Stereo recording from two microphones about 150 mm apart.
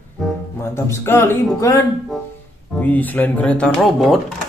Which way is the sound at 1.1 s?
20° left (ahead or behind).